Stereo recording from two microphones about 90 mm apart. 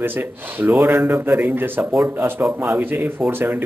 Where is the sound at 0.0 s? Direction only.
25° right (ahead or behind).